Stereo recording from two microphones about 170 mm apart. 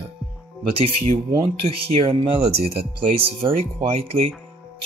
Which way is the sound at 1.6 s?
30° right (ahead or behind).